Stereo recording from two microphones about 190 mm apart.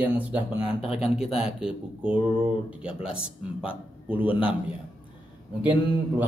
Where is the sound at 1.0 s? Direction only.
30° left (ahead or behind).